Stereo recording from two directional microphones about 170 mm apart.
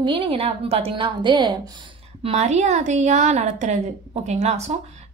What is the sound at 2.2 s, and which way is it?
A woman's voice, 40° right (ahead or behind).